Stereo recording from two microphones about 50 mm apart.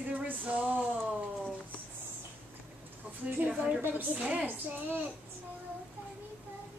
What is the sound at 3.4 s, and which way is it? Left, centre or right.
A woman's voice, right.